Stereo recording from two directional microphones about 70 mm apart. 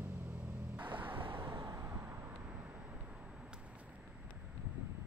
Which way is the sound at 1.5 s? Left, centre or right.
Right.